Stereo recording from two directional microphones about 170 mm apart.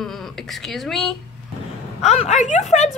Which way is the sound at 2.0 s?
40° left (ahead or behind).